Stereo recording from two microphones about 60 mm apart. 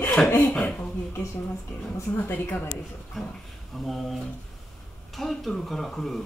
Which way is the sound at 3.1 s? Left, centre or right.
Centre.